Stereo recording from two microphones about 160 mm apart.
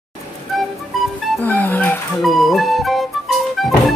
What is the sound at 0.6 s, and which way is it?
Music, centre (ahead or behind).